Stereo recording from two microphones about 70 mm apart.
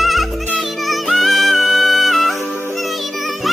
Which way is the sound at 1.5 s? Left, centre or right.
Right.